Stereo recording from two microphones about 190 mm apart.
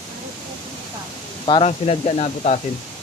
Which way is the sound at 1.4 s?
30° left (ahead or behind).